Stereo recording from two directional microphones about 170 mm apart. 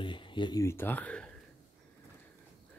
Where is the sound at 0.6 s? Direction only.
15° left (ahead or behind).